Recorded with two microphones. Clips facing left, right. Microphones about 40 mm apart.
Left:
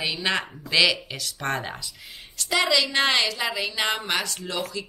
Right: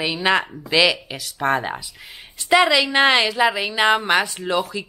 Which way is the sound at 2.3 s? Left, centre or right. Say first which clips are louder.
Right 7 dB; right.